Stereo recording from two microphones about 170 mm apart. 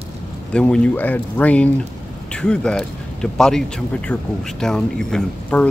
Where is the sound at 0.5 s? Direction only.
5° left (ahead or behind).